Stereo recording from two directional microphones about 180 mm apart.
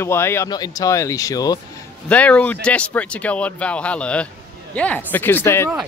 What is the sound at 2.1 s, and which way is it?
A man's voice, 10° left (ahead or behind).